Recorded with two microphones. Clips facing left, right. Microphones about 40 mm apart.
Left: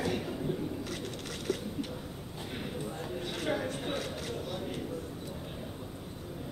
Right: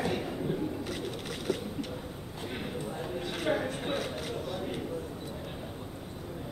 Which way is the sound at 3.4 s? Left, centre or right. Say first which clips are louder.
Right 3 dB; centre.